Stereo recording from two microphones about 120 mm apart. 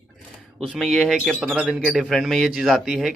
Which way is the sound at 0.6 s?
Centre (ahead or behind).